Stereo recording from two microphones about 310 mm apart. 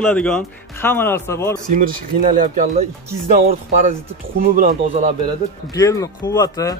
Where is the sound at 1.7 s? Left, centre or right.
Right.